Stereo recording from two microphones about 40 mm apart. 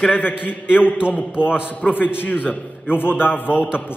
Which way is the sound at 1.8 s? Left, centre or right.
Left.